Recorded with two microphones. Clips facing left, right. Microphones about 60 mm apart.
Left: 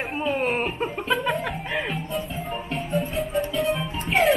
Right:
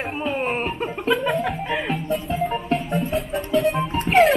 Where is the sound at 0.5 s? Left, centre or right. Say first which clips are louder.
Right 1 dB; centre.